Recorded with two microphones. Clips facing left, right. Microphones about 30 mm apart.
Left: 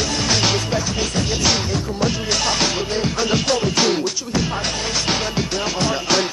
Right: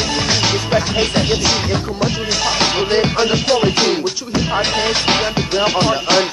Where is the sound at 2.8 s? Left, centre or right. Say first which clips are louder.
Right 6 dB; right.